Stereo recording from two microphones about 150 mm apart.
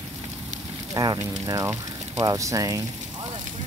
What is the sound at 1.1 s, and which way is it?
Speech, 20° right (ahead or behind).